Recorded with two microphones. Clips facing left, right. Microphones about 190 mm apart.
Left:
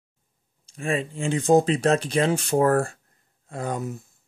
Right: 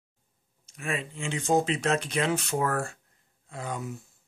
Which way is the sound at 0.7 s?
30° left (ahead or behind).